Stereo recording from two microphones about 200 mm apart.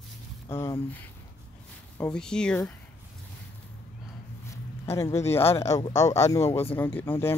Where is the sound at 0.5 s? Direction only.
10° left (ahead or behind).